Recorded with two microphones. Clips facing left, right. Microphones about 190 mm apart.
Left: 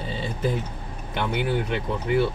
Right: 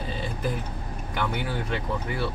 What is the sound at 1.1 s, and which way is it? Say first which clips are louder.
Speech: left 4 dB; 20° left (ahead or behind).